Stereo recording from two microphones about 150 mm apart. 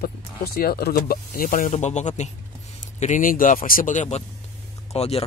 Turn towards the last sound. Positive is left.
turn(degrees=40)  # may be behind; listen again after turning